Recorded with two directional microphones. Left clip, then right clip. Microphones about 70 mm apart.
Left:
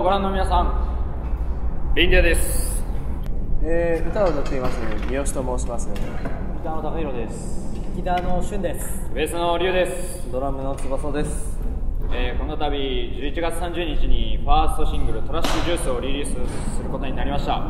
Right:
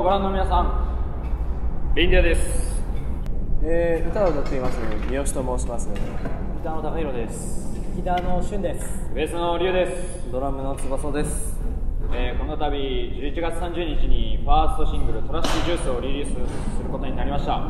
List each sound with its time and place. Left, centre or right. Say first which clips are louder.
0.0 s a man's voice: left 1 dB; left
2.0 s a man's voice: left 2 dB; left
3.6 s speech: even; centre
6.6 s speech: even; right
8.0 s a man's voice: left 1 dB; centre
10.3 s speech: left 1 dB; centre
12.1 s a man's voice: left 1 dB; left